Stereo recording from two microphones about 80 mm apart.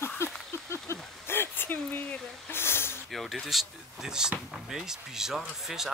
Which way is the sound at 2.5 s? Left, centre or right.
Left.